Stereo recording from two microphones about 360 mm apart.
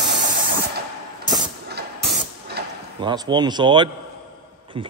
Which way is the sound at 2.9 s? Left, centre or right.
Centre.